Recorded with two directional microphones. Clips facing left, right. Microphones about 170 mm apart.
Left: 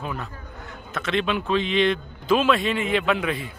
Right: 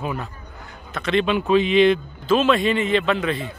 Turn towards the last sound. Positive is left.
turn(degrees=10)  # may be behind; listen again after turning